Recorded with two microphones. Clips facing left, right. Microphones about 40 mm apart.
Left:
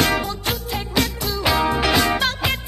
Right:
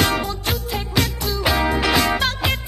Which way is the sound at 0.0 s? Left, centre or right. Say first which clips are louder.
Even; centre.